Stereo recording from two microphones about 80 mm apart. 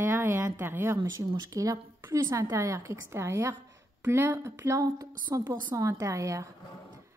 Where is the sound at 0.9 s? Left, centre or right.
Right.